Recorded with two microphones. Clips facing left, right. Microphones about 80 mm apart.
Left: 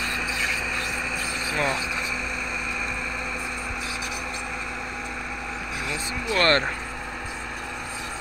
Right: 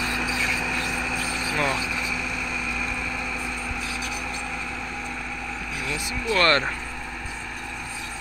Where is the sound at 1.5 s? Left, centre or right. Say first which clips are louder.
Even; left.